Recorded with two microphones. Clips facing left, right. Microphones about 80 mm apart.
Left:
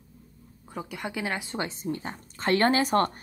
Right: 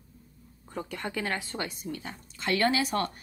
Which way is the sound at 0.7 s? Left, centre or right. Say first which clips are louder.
Even; centre.